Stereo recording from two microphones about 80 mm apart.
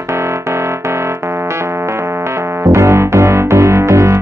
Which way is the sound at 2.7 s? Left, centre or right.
Right.